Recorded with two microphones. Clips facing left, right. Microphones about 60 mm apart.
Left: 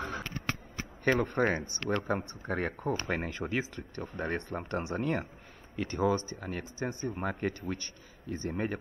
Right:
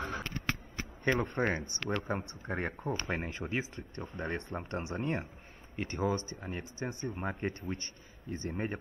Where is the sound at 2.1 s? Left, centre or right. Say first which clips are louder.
Left 3 dB; left.